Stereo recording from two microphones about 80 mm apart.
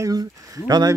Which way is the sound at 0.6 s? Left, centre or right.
Right.